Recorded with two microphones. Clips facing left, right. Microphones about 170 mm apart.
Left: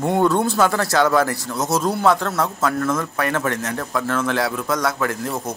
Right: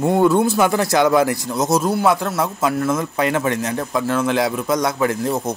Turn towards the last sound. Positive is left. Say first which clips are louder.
# right 4 dB
turn(degrees=-20)  # may be behind; listen again after turning